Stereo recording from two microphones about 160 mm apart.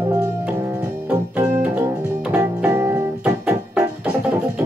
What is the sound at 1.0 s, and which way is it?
Organ, 10° right (ahead or behind).